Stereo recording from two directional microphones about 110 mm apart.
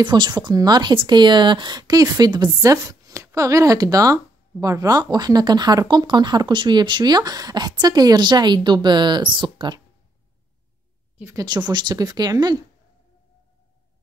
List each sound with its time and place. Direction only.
0.0 s speech: 45° right (ahead or behind)
11.3 s speech: 40° right (ahead or behind)